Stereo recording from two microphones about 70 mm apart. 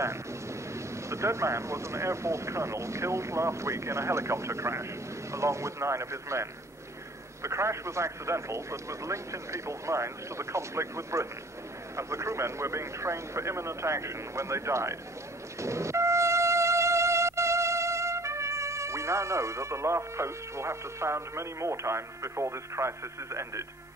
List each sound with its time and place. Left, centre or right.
0.0 s speech: right
15.6 s music: right